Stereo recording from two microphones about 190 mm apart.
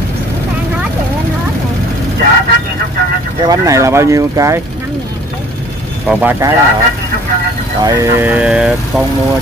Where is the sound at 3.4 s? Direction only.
15° right (ahead or behind).